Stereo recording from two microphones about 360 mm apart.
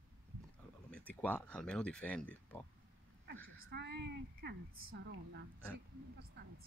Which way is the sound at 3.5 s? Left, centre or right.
Right.